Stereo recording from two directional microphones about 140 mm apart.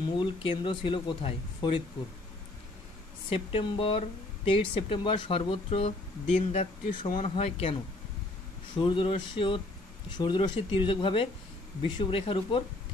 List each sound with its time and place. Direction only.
0.0 s speech: 35° left (ahead or behind)
3.3 s speech: 40° left (ahead or behind)
8.7 s speech: 40° left (ahead or behind)